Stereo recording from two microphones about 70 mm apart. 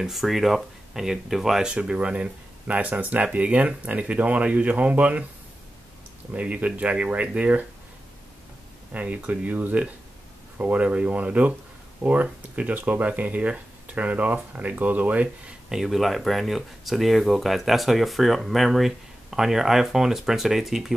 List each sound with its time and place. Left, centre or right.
0.0 s speech: centre; by 5.2 s right
6.3 s speech: right
8.9 s speech: right
15.7 s speech: centre